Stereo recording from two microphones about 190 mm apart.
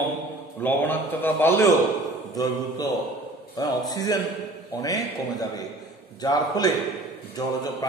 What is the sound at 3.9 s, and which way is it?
A man's voice, 20° left (ahead or behind).